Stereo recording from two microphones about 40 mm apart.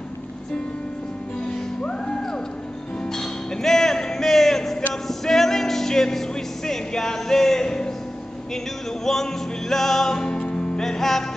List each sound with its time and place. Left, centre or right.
1.5 s music: left
3.1 s music: centre
9.0 s music: centre